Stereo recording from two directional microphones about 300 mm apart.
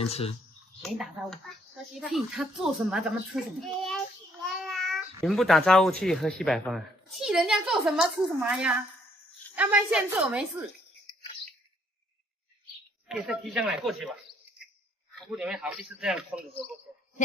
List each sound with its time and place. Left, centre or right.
0.0 s speech: centre
0.8 s a child's voice: centre
13.1 s speech: centre
15.1 s speech: centre
16.9 s a sound: centre